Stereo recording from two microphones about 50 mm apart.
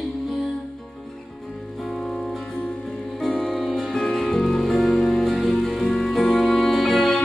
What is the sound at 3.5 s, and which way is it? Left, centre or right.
Music, centre.